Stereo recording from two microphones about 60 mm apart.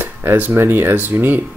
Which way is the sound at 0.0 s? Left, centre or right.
Right.